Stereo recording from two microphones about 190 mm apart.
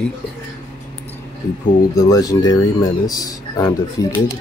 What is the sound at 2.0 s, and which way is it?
Speech, 20° left (ahead or behind).